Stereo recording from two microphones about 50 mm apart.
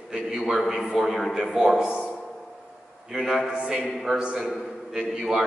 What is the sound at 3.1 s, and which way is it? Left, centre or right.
Speech, centre.